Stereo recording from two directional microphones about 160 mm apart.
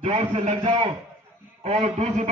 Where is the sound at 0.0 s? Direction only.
40° right (ahead or behind).